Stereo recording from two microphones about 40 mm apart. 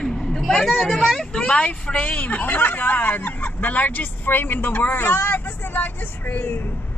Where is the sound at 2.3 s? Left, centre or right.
Left.